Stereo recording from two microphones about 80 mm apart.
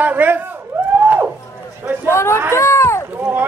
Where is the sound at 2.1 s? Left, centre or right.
Left.